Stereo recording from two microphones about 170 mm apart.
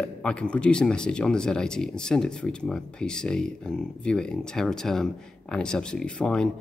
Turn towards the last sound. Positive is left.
turn(degrees=5)  # may be behind; listen again after turning